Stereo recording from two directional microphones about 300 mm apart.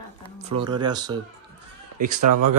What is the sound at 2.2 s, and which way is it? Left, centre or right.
Speech, right.